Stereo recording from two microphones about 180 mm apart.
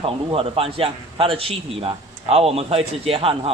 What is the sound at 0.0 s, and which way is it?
A man's voice, 30° right (ahead or behind).